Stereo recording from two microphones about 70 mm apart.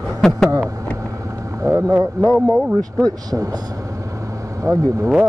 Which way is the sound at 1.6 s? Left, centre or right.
Right.